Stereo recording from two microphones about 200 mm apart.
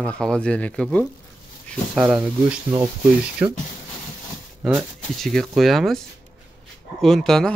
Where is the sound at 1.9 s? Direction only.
5° right (ahead or behind).